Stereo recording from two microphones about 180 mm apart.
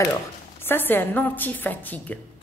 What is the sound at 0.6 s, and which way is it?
A woman's voice, 10° left (ahead or behind).